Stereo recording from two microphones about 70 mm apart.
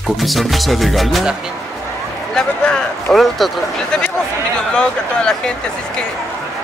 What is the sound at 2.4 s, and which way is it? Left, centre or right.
Speech, centre.